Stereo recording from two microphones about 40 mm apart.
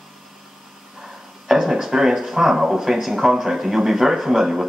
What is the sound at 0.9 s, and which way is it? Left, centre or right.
Speech, centre.